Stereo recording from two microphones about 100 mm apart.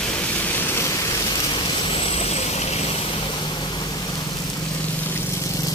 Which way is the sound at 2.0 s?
80° left.